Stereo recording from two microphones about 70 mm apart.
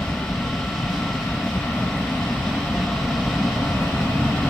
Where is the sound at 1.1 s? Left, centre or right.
Centre.